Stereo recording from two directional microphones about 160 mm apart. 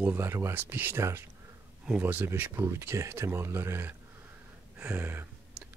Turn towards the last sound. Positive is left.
turn(degrees=-10)  # may be behind; listen again after turning